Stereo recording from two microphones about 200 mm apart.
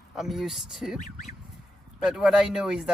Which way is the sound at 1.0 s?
35° left (ahead or behind).